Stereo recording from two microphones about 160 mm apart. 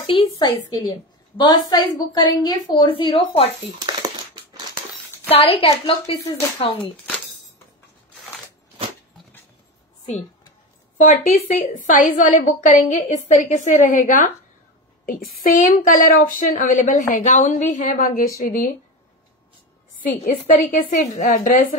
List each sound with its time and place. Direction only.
0.0 s a woman's voice: 35° left (ahead or behind)
5.3 s a woman's voice: 35° left (ahead or behind)
11.0 s a woman's voice: 50° left (ahead or behind)
20.0 s a woman's voice: 55° left (ahead or behind)